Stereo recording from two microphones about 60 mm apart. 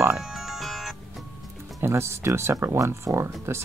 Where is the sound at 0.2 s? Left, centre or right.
Centre.